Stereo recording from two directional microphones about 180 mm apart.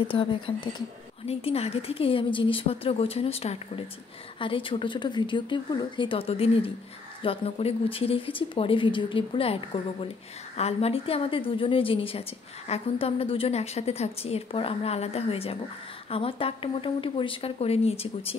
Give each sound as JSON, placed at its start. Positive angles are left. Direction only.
{"t": 0.0, "sound": "a woman's voice", "side_deg": 30}